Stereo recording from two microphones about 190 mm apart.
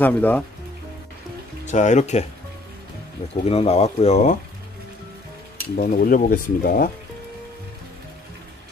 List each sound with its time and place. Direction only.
0.0 s speech: 10° left (ahead or behind)
1.7 s speech: 40° left (ahead or behind)
3.4 s speech: 35° left (ahead or behind)
5.8 s speech: 50° left (ahead or behind)